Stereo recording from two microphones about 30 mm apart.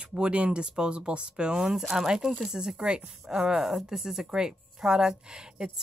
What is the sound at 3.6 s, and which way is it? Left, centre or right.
Speech, centre.